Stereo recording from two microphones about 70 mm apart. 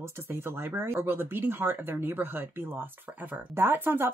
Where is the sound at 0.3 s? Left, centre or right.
Right.